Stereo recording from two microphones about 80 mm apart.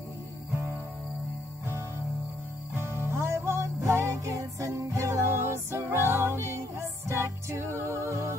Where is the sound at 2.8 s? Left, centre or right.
Right.